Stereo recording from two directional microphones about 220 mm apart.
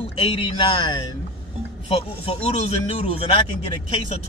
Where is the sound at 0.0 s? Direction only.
25° left (ahead or behind).